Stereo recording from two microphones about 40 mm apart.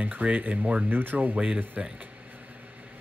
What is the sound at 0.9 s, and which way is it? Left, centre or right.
Speech, right.